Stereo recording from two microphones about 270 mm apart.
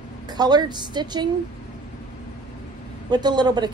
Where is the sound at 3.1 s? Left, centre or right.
Centre.